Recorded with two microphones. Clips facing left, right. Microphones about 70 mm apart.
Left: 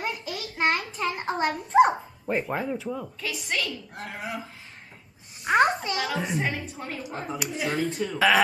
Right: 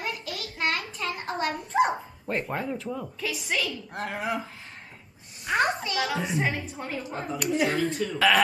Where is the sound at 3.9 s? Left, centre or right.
Right.